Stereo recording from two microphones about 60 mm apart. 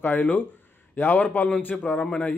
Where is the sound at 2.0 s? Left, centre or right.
Centre.